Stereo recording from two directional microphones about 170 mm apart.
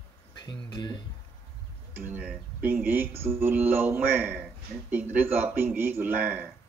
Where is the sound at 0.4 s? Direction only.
25° left (ahead or behind).